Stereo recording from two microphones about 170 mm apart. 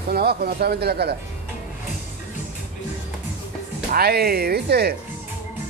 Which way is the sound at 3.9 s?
65° right (ahead or behind).